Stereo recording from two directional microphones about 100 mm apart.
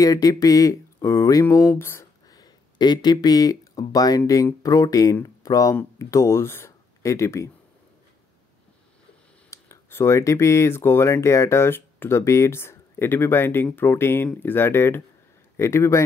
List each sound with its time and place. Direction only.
0.0 s speech: 35° left (ahead or behind)
2.3 s speech: 45° left (ahead or behind)
9.5 s speech: 25° left (ahead or behind)